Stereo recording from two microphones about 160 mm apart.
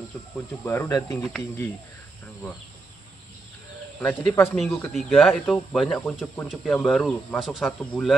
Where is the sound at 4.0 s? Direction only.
15° left (ahead or behind).